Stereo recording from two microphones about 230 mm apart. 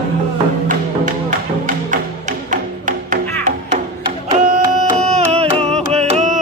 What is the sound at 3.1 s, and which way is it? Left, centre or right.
Music, right.